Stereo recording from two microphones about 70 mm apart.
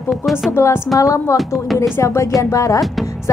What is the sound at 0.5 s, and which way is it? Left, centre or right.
Speech, left.